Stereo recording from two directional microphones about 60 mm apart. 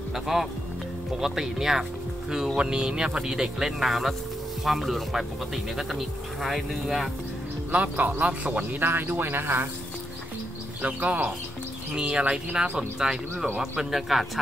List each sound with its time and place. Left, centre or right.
0.1 s speech: centre
7.7 s a man's voice: right
8.8 s speech: right
10.8 s a man's voice: right; by 14.4 s centre